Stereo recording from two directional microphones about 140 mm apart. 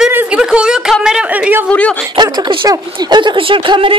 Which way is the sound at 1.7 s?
10° left (ahead or behind).